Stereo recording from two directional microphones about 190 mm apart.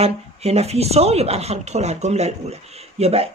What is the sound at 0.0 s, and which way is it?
Speech, 35° right (ahead or behind).